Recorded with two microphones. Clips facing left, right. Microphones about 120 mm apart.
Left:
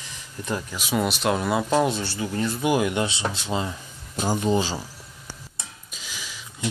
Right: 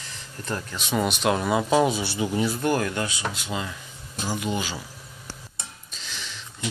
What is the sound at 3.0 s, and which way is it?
Speech, 30° left (ahead or behind).